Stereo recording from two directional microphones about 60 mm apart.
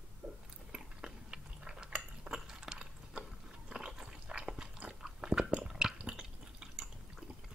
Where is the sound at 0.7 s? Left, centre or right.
Centre.